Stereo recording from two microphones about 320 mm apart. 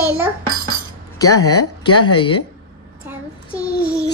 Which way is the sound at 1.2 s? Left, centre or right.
Left.